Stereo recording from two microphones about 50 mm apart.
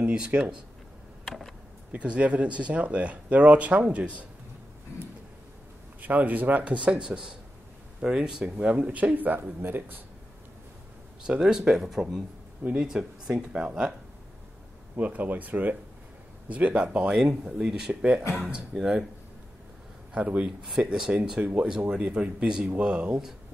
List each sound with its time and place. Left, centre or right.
0.0 s speech: right
1.9 s speech: right
5.9 s speech: right; by 8.5 s centre
8.5 s speech: right
11.2 s speech: centre
12.7 s speech: centre
15.0 s speech: right
17.1 s speech: centre
20.2 s speech: right
20.4 s speech: centre
21.4 s speech: right
21.6 s speech: centre
22.0 s speech: right